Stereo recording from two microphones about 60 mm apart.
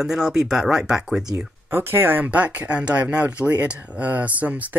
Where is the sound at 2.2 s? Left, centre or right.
Right.